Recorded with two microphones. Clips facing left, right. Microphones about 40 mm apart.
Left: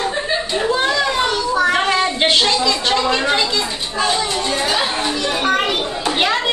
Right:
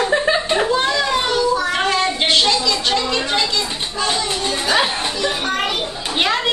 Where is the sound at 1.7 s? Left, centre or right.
Centre.